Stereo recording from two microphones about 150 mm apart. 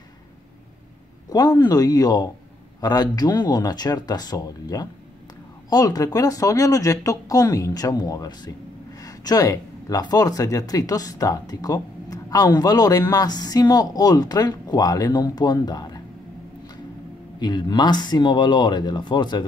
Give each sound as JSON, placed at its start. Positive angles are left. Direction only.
{"t": 1.3, "sound": "speech", "side_deg": 25}
{"t": 17.4, "sound": "speech", "side_deg": 30}